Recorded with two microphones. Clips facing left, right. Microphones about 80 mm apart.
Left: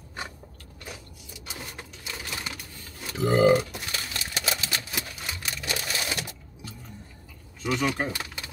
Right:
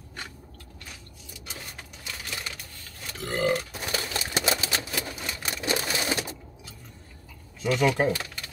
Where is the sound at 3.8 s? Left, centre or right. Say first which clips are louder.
Right 4 dB; right.